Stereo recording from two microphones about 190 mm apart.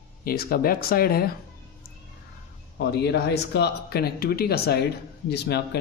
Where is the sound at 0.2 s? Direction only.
50° left (ahead or behind).